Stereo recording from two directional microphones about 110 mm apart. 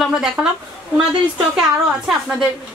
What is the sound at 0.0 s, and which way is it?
Speech, 5° right (ahead or behind).